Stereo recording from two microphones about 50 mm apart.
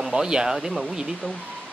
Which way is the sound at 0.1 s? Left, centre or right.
Centre.